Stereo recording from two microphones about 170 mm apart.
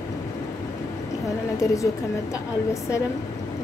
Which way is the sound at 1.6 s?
20° left (ahead or behind).